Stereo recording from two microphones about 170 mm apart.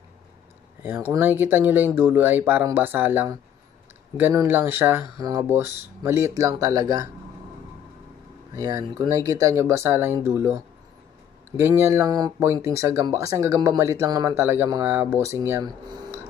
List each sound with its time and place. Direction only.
0.8 s speech: 10° right (ahead or behind)
8.5 s speech: 20° right (ahead or behind)